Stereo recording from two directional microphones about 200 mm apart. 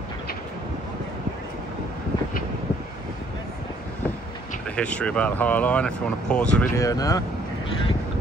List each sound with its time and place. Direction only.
4.6 s speech: 5° left (ahead or behind)
6.8 s speech: 15° left (ahead or behind)